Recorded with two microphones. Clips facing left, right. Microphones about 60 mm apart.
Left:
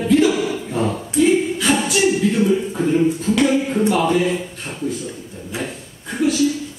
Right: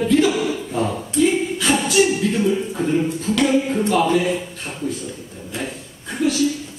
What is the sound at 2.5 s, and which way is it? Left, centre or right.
Speech, centre.